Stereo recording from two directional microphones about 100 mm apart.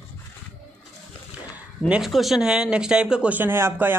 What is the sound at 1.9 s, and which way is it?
Speech, 5° right (ahead or behind).